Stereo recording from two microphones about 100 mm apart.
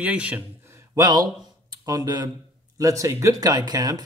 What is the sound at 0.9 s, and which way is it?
Speech, 40° right (ahead or behind).